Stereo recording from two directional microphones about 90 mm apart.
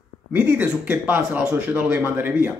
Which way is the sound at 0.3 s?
25° right (ahead or behind).